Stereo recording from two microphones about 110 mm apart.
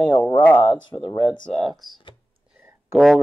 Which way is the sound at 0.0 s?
45° left (ahead or behind).